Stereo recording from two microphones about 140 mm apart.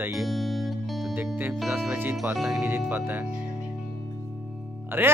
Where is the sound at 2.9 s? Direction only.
15° right (ahead or behind).